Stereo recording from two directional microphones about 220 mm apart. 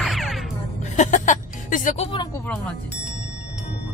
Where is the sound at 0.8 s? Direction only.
35° left (ahead or behind).